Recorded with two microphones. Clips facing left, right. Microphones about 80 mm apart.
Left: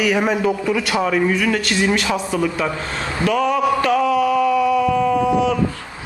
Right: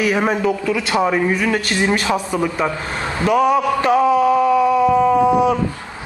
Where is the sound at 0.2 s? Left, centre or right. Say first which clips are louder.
Even; centre.